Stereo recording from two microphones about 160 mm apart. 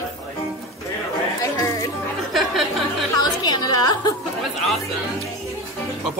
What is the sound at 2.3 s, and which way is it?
Music, centre (ahead or behind).